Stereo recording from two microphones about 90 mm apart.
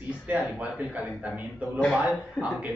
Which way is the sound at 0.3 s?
15° right (ahead or behind).